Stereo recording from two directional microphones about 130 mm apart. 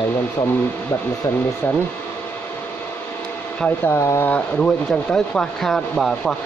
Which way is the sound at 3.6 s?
20° left (ahead or behind).